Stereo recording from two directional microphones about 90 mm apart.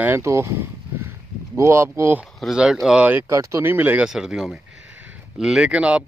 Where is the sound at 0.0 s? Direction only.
30° right (ahead or behind).